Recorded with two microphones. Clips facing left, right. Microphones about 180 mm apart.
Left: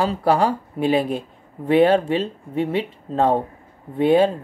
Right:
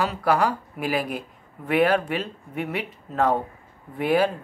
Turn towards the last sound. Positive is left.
turn(degrees=25)  # may be behind; listen again after turning